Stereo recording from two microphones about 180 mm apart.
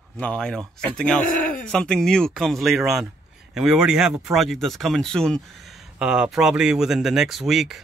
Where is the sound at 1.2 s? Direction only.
50° left (ahead or behind).